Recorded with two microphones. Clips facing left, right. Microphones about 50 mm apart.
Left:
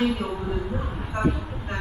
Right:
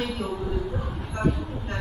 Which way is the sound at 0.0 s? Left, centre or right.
Centre.